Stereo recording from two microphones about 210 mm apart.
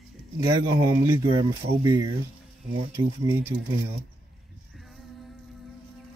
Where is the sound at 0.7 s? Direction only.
20° right (ahead or behind).